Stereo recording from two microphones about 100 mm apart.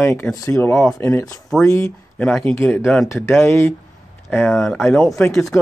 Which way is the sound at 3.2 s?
25° left (ahead or behind).